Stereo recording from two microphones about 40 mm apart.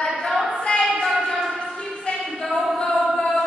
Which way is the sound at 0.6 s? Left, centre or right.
Centre.